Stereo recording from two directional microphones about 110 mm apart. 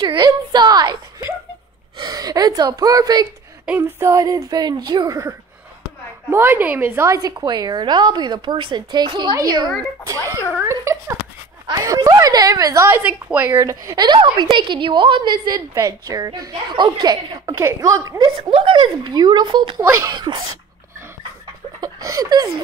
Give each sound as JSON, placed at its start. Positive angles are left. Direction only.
{"t": 0.0, "sound": "whimper", "side_deg": -40}
{"t": 2.0, "sound": "a woman's voice", "side_deg": -35}
{"t": 6.3, "sound": "a woman's voice", "side_deg": -20}
{"t": 7.1, "sound": "a woman's voice", "side_deg": -30}
{"t": 10.5, "sound": "a woman's voice", "side_deg": -25}
{"t": 13.0, "sound": "a woman's voice", "side_deg": -15}
{"t": 13.6, "sound": "a woman's voice", "side_deg": -30}
{"t": 14.0, "sound": "a woman's voice", "side_deg": -45}
{"t": 15.7, "sound": "a woman's voice", "side_deg": -30}
{"t": 18.5, "sound": "a woman's voice", "side_deg": -50}
{"t": 19.9, "sound": "a woman's voice", "side_deg": -35}
{"t": 21.8, "sound": "speech", "side_deg": -30}